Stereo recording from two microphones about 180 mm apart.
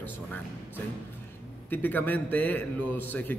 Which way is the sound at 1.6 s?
10° left (ahead or behind).